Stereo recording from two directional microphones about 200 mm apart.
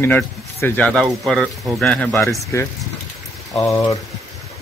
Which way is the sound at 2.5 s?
15° left (ahead or behind).